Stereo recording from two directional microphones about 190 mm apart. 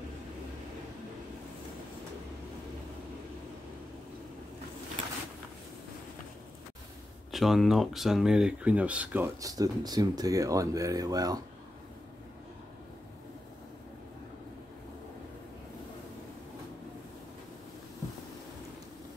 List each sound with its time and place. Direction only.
7.2 s speech: centre (ahead or behind); by 11.4 s 20° right (ahead or behind)